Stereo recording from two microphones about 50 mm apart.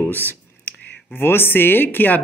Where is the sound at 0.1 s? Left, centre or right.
Left.